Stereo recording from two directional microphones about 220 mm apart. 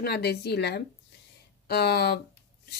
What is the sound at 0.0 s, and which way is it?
A woman's voice, 45° left (ahead or behind).